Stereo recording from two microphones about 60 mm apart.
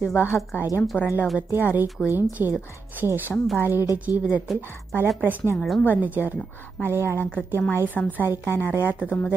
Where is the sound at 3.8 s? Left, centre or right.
Left.